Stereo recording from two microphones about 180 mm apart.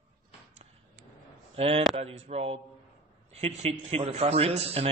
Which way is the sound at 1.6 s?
35° right (ahead or behind).